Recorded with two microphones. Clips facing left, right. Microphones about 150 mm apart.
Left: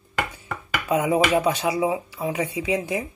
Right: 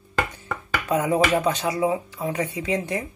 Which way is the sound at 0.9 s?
10° left (ahead or behind).